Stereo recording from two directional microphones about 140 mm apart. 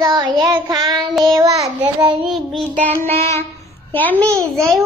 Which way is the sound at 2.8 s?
15° left (ahead or behind).